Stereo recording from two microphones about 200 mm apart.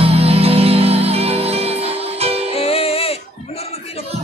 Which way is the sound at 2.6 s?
30° left (ahead or behind).